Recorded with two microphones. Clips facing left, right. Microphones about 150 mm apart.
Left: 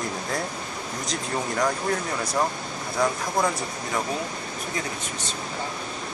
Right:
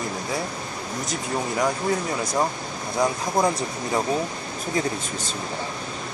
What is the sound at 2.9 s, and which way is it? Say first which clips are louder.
Speech: right 2 dB; 25° right (ahead or behind).